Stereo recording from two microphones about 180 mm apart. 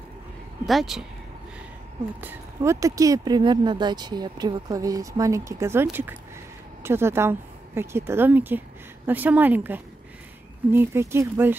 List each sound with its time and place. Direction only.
0.7 s speech: centre (ahead or behind)
2.2 s a woman's voice: 15° right (ahead or behind)